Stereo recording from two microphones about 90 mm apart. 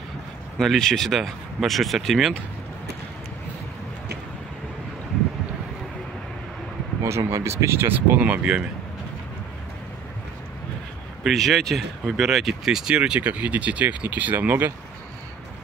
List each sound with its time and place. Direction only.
0.6 s speech: 5° left (ahead or behind)
7.0 s speech: 30° right (ahead or behind); by 8.6 s 10° right (ahead or behind)
11.2 s speech: centre (ahead or behind); by 14.7 s 20° right (ahead or behind)